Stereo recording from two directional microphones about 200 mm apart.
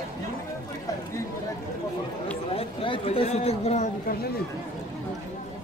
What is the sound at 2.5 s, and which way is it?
Speech, 25° left (ahead or behind).